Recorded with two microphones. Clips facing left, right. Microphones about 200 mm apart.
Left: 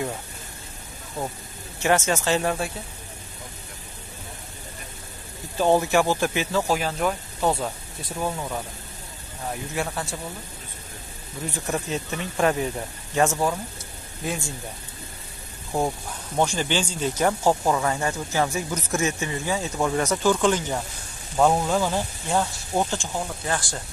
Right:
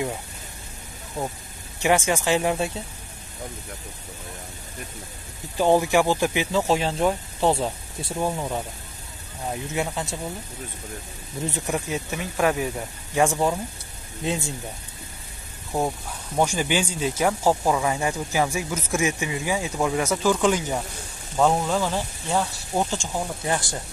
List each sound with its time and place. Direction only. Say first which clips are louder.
1.2 s speech: right 1 dB; 15° right (ahead or behind)
5.6 s speech: right 1 dB; 15° right (ahead or behind)
9.5 s speech: right 2 dB; 20° right (ahead or behind)
11.5 s speech: left 1 dB; 10° right (ahead or behind)
16.3 s speech: right 1 dB; 10° right (ahead or behind)
22.9 s speech: right 1 dB; 15° right (ahead or behind)